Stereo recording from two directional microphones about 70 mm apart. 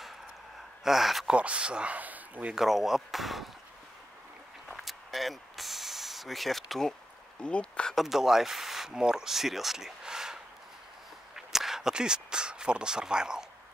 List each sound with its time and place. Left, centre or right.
0.8 s speech: centre
1.2 s speech: centre
2.5 s speech: centre
4.8 s vehicle: centre
7.4 s speech: centre
7.9 s speech: centre